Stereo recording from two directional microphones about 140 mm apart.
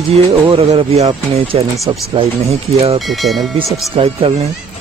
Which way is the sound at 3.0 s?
Centre (ahead or behind).